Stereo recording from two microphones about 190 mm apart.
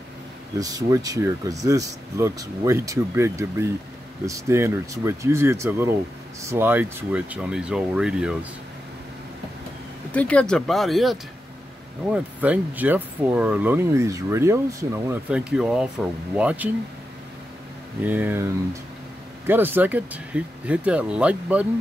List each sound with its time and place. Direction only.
0.6 s speech: 20° right (ahead or behind)
10.1 s speech: 5° left (ahead or behind)
18.0 s speech: 10° right (ahead or behind)
19.4 s speech: 10° right (ahead or behind)